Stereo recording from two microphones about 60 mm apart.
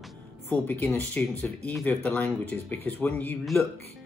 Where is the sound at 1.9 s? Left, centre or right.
Left.